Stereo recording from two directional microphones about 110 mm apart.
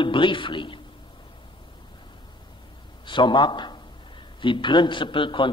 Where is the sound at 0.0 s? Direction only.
50° left (ahead or behind).